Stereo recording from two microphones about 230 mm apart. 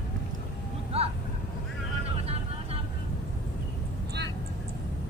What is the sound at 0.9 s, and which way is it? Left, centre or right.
Vehicle, right.